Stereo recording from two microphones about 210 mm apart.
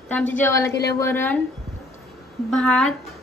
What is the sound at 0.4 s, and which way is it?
A woman's voice, 15° left (ahead or behind).